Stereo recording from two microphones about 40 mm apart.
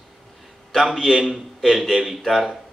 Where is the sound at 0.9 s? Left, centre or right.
Centre.